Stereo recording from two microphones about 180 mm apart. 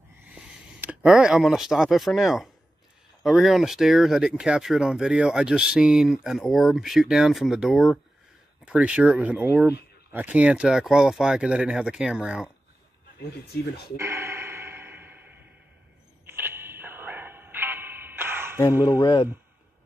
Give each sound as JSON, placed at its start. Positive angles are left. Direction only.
{"t": 0.3, "sound": "speech", "side_deg": -10}
{"t": 13.9, "sound": "a sound", "side_deg": -15}
{"t": 18.9, "sound": "speech", "side_deg": 20}